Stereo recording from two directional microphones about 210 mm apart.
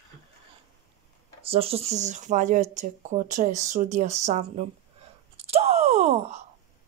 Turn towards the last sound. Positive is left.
turn(degrees=-30)  # may be behind; listen again after turning